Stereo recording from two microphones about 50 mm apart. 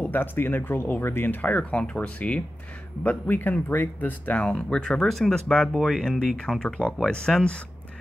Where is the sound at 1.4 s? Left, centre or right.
Left.